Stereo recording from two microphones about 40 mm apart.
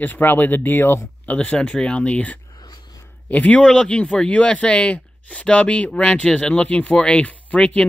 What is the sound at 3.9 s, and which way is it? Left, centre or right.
Speech, left.